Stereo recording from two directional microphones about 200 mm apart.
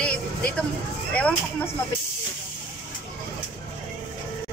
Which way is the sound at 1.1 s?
5° left (ahead or behind).